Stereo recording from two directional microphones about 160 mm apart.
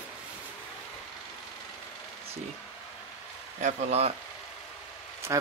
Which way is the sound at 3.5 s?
45° right (ahead or behind).